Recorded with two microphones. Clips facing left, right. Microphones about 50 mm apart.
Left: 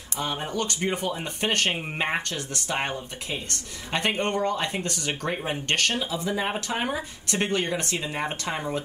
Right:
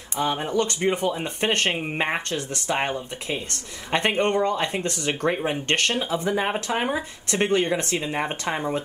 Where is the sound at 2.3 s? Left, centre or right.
Right.